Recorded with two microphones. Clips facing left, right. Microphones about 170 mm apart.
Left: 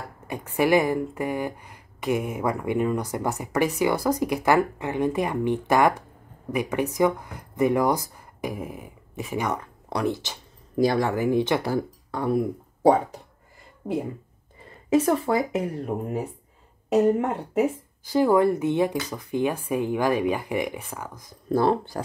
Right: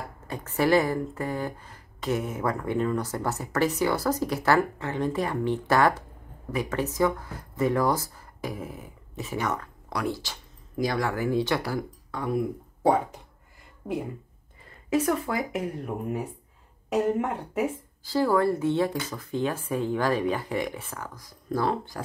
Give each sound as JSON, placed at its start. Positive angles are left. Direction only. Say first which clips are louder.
{"t": 0.3, "sound": "speech", "louder": "left 2 dB", "side_deg": 15}
{"t": 13.8, "sound": "speech", "louder": "left 3 dB", "side_deg": 15}
{"t": 14.9, "sound": "speech", "louder": "left 4 dB", "side_deg": 30}
{"t": 17.6, "sound": "speech", "louder": "left 6 dB", "side_deg": 20}